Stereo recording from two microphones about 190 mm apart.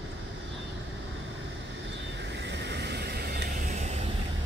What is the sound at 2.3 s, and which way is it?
Vehicle, 65° right (ahead or behind).